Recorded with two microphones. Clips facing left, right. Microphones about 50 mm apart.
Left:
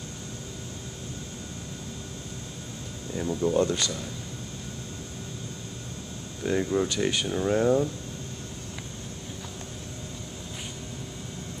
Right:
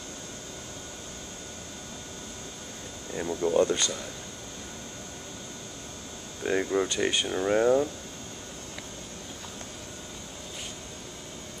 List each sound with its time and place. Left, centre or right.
3.1 s speech: centre
6.4 s speech: centre